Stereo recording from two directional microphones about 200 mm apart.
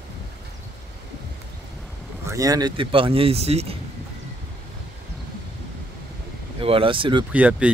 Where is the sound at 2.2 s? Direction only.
15° right (ahead or behind); by 3.8 s 30° right (ahead or behind).